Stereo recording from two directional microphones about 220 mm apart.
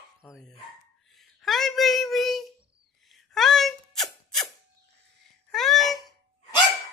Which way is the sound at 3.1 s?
Centre (ahead or behind).